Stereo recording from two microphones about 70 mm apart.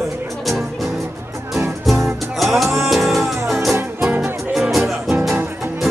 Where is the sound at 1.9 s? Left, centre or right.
Centre.